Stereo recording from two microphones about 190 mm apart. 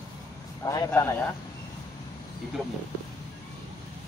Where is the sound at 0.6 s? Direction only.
20° left (ahead or behind).